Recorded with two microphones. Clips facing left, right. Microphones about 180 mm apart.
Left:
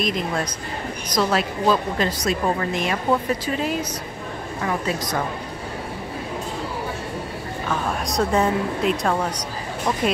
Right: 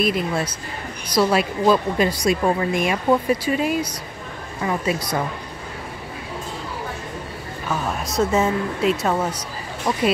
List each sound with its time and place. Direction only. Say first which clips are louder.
0.0 s a woman's voice: right 2 dB; 10° right (ahead or behind)
4.8 s a woman's voice: right 2 dB; 10° right (ahead or behind)
8.1 s speech: right 1 dB; centre (ahead or behind)